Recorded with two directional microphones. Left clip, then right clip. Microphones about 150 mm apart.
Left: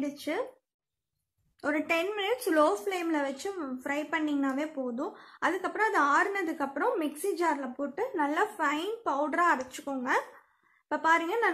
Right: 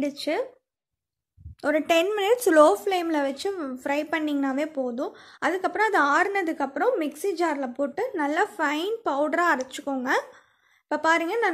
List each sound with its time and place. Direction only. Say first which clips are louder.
0.0 s a woman's voice: right 6 dB; 30° right (ahead or behind)
1.6 s a woman's voice: right 7 dB; 30° right (ahead or behind)
1.9 s a woman's voice: right 10 dB; 55° right (ahead or behind)
2.7 s a woman's voice: right 6 dB; 35° right (ahead or behind)